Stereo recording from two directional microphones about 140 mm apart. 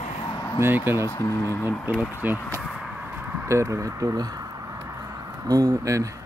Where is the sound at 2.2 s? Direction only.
10° right (ahead or behind).